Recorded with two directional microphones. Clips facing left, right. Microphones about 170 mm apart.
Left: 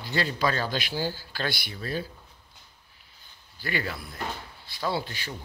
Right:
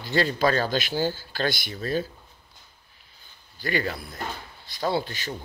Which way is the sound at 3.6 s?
40° right (ahead or behind).